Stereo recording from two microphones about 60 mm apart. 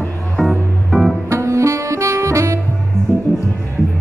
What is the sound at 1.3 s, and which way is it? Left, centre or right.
Saxophone, right.